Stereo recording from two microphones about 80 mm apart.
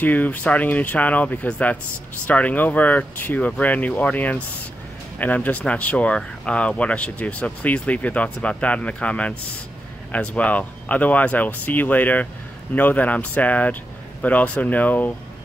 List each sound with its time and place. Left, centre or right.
0.0 s speech: left